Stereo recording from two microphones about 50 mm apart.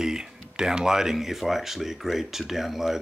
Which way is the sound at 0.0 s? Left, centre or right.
Centre.